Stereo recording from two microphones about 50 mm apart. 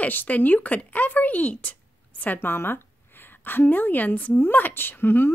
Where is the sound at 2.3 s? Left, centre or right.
Left.